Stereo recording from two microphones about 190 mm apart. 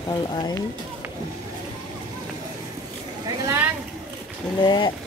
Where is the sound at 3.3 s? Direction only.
15° right (ahead or behind).